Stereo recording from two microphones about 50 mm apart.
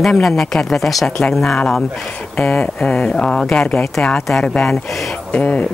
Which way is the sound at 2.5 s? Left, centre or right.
Left.